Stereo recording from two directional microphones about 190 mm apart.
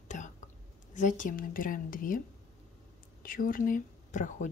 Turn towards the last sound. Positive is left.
turn(degrees=40)  # may be behind; listen again after turning